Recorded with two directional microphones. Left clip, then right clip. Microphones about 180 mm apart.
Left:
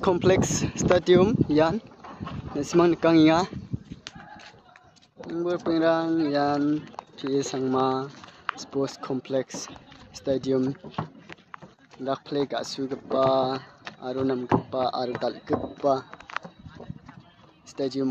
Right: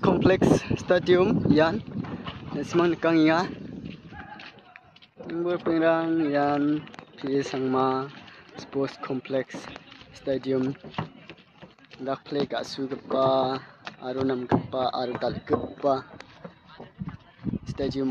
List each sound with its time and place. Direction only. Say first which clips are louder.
0.0 s speech: even; 10° left (ahead or behind)
2.5 s speech: left 3 dB; 25° left (ahead or behind)
5.3 s speech: even; 10° left (ahead or behind)
12.0 s speech: left 1 dB; 15° left (ahead or behind)
17.6 s speech: left 2 dB; 15° left (ahead or behind)